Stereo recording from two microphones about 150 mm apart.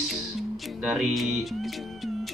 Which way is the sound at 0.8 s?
Centre (ahead or behind).